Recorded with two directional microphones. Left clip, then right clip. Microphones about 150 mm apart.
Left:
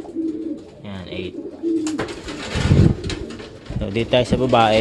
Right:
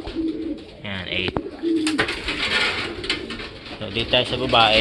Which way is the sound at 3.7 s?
55° left (ahead or behind).